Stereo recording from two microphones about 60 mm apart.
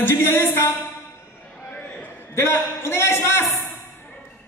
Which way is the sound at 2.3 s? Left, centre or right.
Left.